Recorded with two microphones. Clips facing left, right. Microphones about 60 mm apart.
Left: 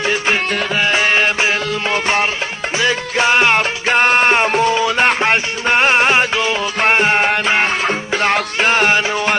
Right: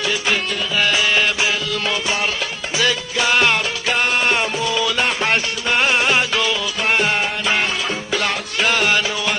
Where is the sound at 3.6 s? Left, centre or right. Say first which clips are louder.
Left 5 dB; left.